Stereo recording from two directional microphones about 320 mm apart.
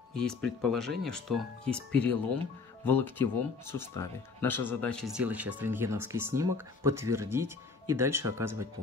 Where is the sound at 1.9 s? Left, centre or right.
Right.